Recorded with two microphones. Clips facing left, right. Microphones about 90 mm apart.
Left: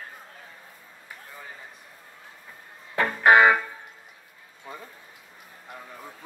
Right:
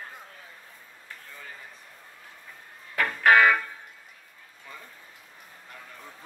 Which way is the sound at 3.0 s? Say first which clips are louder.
Left 2 dB; 25° left (ahead or behind).